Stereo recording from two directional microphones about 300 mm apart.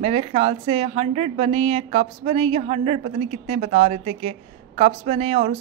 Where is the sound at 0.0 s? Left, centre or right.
Right.